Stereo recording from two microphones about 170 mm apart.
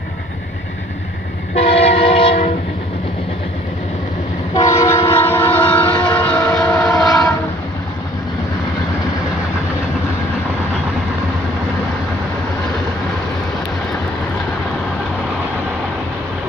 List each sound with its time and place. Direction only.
1.5 s train: 35° left (ahead or behind)
4.6 s train: 20° left (ahead or behind); by 7.2 s centre (ahead or behind)